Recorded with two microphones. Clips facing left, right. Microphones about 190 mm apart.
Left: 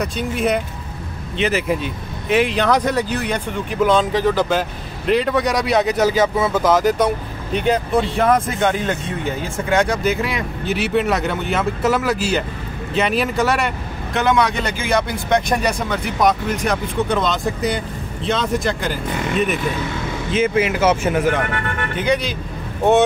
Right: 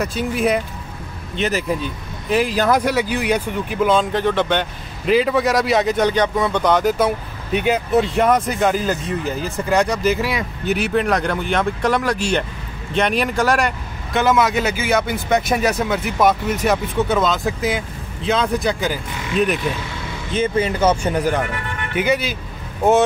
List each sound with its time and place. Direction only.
0.0 s speech: 5° right (ahead or behind)
20.3 s speech: 30° right (ahead or behind)
20.8 s speech: 5° left (ahead or behind)